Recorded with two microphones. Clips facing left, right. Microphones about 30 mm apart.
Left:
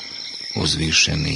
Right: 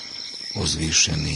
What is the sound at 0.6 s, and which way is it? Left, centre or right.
Speech, left.